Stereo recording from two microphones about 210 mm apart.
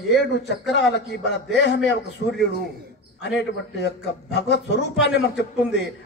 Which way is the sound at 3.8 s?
55° left (ahead or behind).